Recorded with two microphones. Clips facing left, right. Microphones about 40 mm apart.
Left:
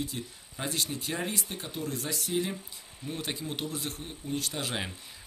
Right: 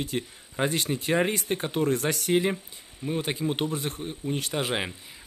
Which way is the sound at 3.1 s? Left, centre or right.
Right.